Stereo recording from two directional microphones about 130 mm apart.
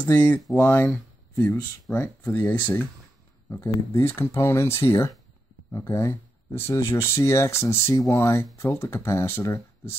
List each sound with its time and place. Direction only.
0.0 s speech: 10° left (ahead or behind)